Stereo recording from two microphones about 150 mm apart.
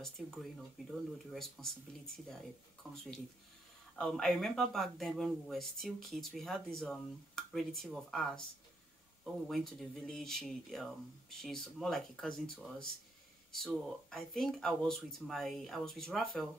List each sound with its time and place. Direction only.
0.0 s speech: centre (ahead or behind)
2.8 s speech: centre (ahead or behind)
14.1 s speech: 5° left (ahead or behind)